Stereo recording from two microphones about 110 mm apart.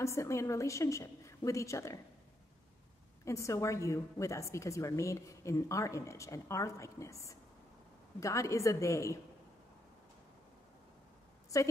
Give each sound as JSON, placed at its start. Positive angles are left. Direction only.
{"t": 0.0, "sound": "a woman's voice", "side_deg": 25}
{"t": 3.3, "sound": "a woman's voice", "side_deg": 25}
{"t": 11.5, "sound": "a woman's voice", "side_deg": 30}